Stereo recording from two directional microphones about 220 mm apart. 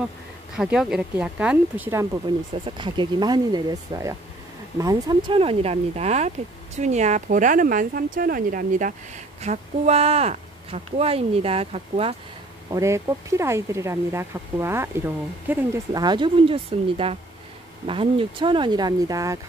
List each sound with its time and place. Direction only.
0.6 s speech: centre (ahead or behind); by 12.2 s 25° right (ahead or behind)
12.6 s speech: 15° right (ahead or behind)